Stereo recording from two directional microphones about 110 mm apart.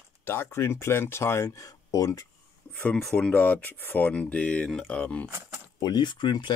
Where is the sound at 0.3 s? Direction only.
25° left (ahead or behind).